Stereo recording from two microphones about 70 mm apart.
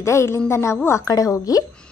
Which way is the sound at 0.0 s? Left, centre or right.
Left.